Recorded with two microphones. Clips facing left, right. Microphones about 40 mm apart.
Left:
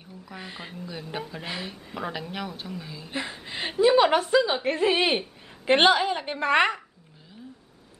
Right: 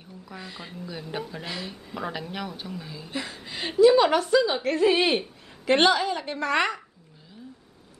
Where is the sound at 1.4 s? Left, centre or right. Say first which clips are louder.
Even; centre.